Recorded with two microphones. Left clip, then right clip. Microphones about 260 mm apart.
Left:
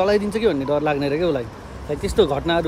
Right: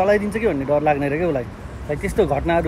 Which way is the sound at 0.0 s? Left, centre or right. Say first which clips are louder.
Even; left.